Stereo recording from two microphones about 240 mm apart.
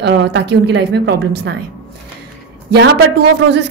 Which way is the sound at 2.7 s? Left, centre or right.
Right.